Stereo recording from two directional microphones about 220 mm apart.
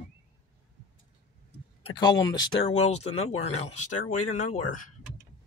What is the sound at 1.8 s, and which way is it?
Speech, 25° left (ahead or behind).